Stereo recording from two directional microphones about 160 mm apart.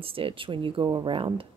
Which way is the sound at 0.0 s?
35° right (ahead or behind).